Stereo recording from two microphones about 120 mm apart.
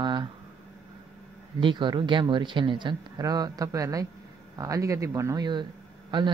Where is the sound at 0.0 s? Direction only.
40° right (ahead or behind).